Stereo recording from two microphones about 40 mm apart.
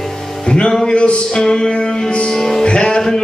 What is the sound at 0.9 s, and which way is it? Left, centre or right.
Music, left.